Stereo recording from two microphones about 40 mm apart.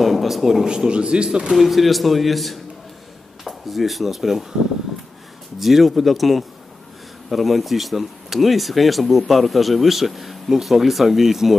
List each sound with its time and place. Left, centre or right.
0.0 s speech: centre
0.7 s speech: right
1.5 s speech: centre
5.6 s speech: centre